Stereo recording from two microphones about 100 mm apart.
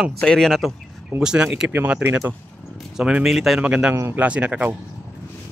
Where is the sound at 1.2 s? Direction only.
5° right (ahead or behind).